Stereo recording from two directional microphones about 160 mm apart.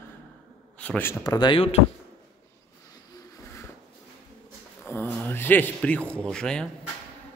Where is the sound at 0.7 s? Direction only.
10° left (ahead or behind).